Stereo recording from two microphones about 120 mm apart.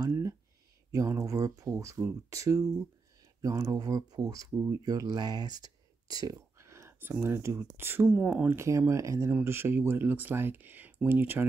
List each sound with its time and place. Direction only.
0.1 s a sound: 25° right (ahead or behind)
0.9 s speech: 30° right (ahead or behind)
8.5 s speech: 25° right (ahead or behind)